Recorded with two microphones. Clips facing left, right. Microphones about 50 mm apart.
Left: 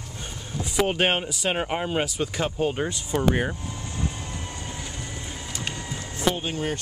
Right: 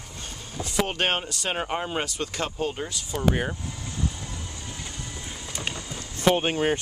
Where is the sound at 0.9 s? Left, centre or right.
Centre.